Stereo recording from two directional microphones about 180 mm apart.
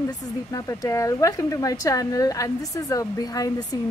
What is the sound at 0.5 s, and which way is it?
Speech, 20° left (ahead or behind).